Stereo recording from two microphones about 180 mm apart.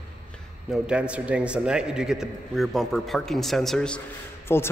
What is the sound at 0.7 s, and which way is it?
A man's voice, 5° right (ahead or behind).